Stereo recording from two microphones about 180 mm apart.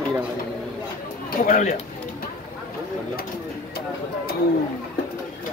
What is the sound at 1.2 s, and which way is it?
Speech, 50° left (ahead or behind).